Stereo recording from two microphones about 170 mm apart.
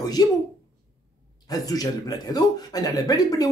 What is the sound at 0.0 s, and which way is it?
Speech, 20° left (ahead or behind).